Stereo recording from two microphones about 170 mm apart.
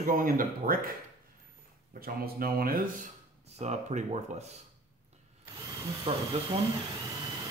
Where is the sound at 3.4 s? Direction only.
40° right (ahead or behind).